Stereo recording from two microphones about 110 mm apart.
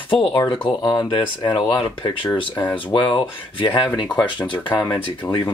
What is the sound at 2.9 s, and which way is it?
Speech, 50° left (ahead or behind).